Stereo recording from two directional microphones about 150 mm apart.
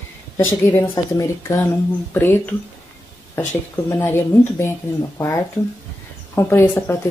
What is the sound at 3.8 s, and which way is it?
Speech, 15° left (ahead or behind).